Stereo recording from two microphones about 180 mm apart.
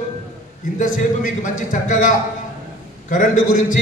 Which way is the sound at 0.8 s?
45° left (ahead or behind).